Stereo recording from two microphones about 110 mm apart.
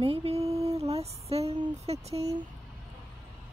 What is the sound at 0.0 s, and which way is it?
Female singing, 65° right (ahead or behind).